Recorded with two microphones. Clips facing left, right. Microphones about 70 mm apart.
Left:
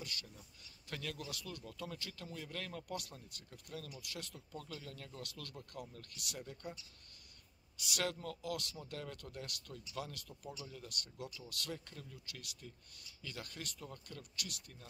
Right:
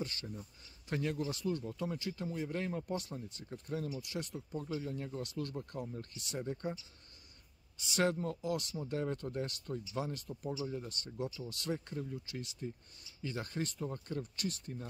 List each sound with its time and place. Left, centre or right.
0.0 s a man's voice: right
7.8 s a man's voice: right